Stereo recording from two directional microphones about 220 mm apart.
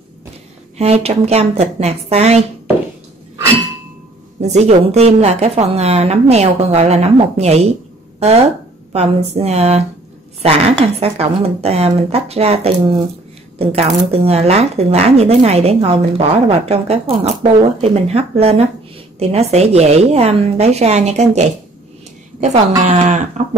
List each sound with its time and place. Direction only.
0.7 s speech: 30° right (ahead or behind)
4.4 s speech: 30° right (ahead or behind)
8.9 s speech: 30° right (ahead or behind)
13.6 s speech: 25° right (ahead or behind)